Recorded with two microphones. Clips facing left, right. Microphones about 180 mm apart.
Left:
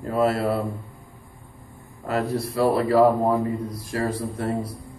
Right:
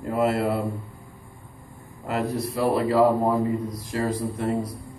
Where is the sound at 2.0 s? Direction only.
20° right (ahead or behind).